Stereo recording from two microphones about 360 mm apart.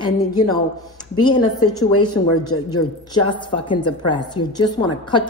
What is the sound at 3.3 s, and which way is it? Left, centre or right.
A woman's voice, centre.